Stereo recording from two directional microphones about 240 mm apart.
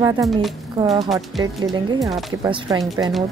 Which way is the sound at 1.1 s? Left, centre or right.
Centre.